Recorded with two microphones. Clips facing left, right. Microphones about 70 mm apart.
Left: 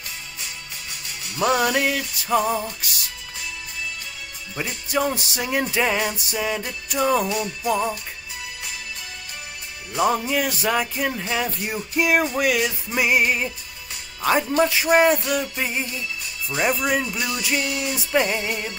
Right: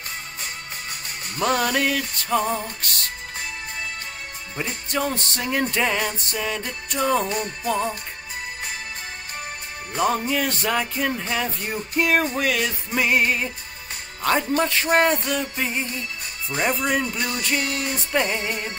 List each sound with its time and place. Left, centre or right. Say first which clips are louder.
1.4 s music: left 2 dB; centre
4.8 s music: left 3 dB; centre
7.2 s music: left 1 dB; right
7.6 s music: left 2 dB; centre
9.9 s music: left 1 dB; centre
14.6 s music: left 5 dB; centre
16.4 s speech: left 1 dB; centre
17.4 s music: even; centre